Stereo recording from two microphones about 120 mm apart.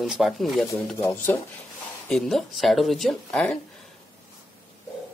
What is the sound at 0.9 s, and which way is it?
Speech, 15° left (ahead or behind).